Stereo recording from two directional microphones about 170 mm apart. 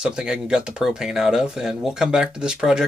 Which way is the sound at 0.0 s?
5° right (ahead or behind).